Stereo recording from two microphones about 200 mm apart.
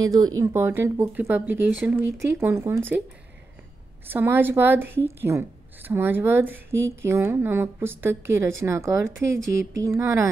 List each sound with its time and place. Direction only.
0.0 s a woman's voice: 20° right (ahead or behind)
4.1 s a woman's voice: 10° right (ahead or behind)
9.3 s speech: 70° right (ahead or behind)
9.8 s a woman's voice: 15° right (ahead or behind)